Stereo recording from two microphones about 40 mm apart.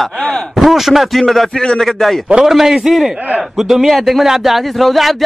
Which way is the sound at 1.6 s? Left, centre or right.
Centre.